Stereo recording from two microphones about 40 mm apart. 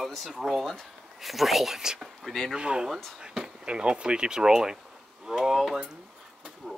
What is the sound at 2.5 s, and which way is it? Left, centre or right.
Speech, right.